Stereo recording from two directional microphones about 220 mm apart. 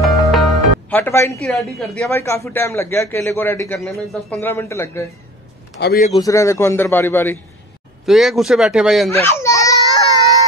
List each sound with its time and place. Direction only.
0.0 s music: centre (ahead or behind)
1.5 s a man's voice: centre (ahead or behind)
2.0 s a man's voice: 10° left (ahead or behind)
3.8 s a man's voice: centre (ahead or behind)
5.8 s a man's voice: 45° left (ahead or behind)
6.1 s a man's voice: 15° left (ahead or behind)
8.0 s a man's voice: centre (ahead or behind)
9.1 s baby cry: 10° left (ahead or behind)